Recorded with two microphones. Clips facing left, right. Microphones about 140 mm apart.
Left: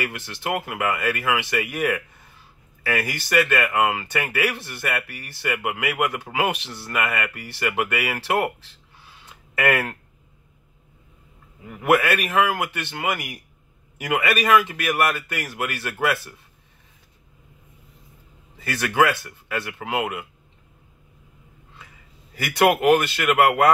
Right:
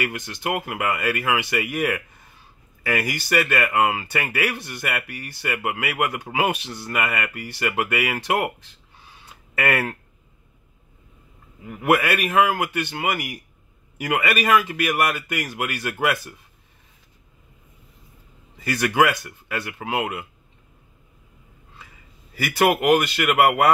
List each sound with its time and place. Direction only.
0.0 s speech: 15° right (ahead or behind)
11.9 s speech: 10° right (ahead or behind)
18.6 s speech: 10° right (ahead or behind)
22.3 s speech: 10° right (ahead or behind)